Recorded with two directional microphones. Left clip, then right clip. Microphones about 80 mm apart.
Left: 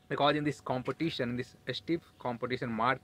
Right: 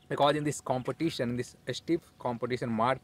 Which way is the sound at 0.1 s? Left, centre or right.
Right.